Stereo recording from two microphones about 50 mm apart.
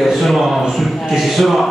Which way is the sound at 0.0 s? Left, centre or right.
Centre.